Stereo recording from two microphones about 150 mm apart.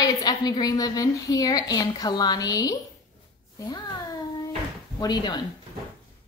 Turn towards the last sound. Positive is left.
turn(degrees=30)  # may be behind; listen again after turning